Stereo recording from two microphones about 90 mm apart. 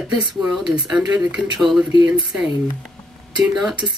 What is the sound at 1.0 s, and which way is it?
Speech, 5° right (ahead or behind).